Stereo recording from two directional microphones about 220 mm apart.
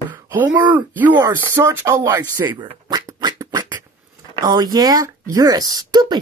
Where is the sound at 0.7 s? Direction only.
10° right (ahead or behind).